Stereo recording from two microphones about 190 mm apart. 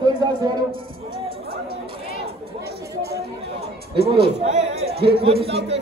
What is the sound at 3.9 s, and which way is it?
Speech, 55° right (ahead or behind).